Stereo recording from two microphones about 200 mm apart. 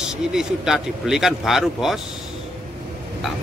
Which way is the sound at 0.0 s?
5° right (ahead or behind).